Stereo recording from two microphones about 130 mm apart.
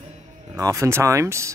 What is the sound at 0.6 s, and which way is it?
Speech, 25° right (ahead or behind).